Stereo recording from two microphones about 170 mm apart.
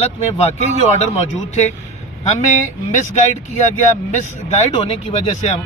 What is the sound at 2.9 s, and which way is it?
Speech, 45° left (ahead or behind).